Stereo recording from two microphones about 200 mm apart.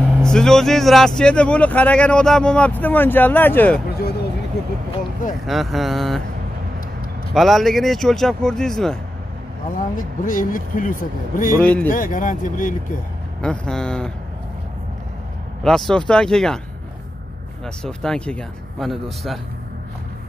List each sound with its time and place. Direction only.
0.1 s speech: 5° left (ahead or behind)
5.5 s speech: centre (ahead or behind)
7.3 s speech: centre (ahead or behind)
9.9 s speech: 40° left (ahead or behind)
13.4 s speech: 5° left (ahead or behind)
15.6 s speech: 5° left (ahead or behind)
17.6 s speech: 5° left (ahead or behind)